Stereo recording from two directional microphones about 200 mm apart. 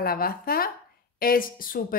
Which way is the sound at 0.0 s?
45° left (ahead or behind).